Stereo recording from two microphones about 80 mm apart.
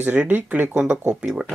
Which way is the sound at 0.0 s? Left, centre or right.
Right.